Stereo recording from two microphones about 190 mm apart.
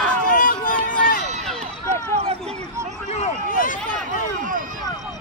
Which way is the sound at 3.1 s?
35° left (ahead or behind).